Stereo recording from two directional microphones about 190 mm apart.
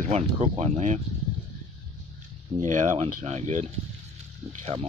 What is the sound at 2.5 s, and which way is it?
Speech, 40° right (ahead or behind).